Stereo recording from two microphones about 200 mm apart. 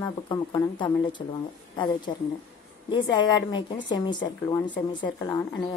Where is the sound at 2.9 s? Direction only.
20° left (ahead or behind).